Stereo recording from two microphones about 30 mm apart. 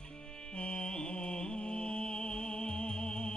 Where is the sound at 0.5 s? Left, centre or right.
Left.